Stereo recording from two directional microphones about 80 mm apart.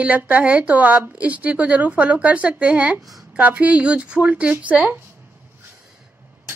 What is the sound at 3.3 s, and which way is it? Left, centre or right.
A woman's voice, centre.